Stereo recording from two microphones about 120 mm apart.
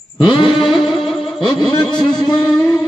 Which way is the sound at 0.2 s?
45° left (ahead or behind).